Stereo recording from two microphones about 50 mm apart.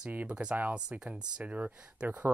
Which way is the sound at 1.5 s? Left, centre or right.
Right.